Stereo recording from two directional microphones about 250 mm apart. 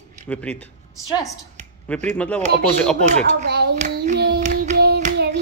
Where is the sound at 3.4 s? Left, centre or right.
Right.